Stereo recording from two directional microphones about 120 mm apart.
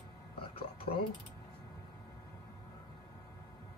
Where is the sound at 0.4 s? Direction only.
50° left (ahead or behind).